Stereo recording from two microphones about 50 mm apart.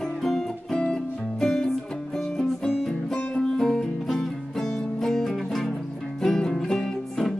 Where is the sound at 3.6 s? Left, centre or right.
Centre.